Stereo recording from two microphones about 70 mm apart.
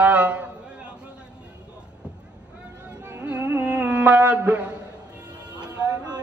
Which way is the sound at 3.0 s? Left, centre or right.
Right.